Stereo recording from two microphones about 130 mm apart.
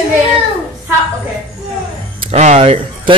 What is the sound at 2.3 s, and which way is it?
Speech, 60° right (ahead or behind).